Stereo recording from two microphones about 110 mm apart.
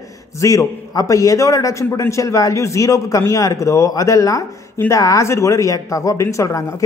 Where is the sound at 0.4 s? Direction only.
30° left (ahead or behind).